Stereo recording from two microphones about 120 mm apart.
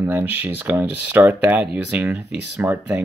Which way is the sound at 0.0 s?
15° right (ahead or behind).